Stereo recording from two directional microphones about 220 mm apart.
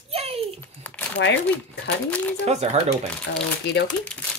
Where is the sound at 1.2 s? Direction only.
55° left (ahead or behind).